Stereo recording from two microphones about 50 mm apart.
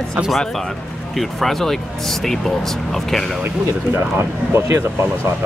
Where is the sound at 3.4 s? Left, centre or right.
Right.